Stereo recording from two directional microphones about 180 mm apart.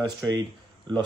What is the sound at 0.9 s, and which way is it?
Speech, 25° right (ahead or behind).